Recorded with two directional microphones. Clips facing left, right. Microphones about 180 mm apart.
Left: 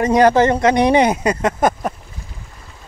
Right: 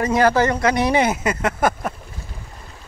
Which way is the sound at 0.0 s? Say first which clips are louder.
Left 4 dB; 20° left (ahead or behind).